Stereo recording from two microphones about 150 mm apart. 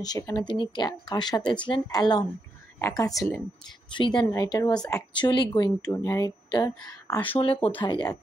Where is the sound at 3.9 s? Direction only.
30° left (ahead or behind).